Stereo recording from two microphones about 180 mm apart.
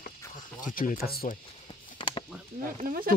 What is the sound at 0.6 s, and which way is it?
Speech, 50° left (ahead or behind).